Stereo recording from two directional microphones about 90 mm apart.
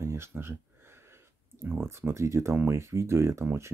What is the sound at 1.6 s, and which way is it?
Speech, 25° right (ahead or behind).